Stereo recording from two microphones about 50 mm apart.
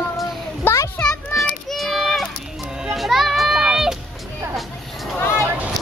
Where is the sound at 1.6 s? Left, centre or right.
Centre.